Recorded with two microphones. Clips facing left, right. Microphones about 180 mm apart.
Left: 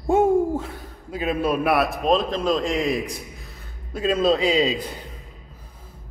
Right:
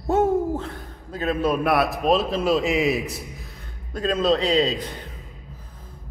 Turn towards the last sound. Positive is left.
turn(degrees=10)  # may be behind; listen again after turning